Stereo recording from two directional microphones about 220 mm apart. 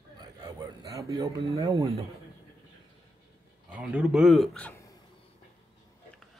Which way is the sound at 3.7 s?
5° right (ahead or behind).